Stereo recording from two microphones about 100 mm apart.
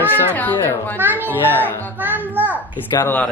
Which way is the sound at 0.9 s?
20° right (ahead or behind).